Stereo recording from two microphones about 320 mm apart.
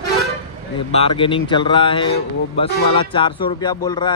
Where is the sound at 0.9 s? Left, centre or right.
Centre.